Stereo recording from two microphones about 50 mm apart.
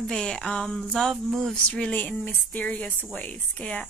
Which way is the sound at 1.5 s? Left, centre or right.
Left.